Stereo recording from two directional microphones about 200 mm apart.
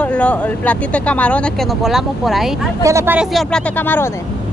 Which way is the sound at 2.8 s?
15° right (ahead or behind).